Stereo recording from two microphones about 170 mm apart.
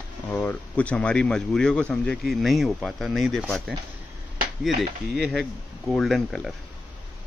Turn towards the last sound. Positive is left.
turn(degrees=0)  # may be behind; listen again after turning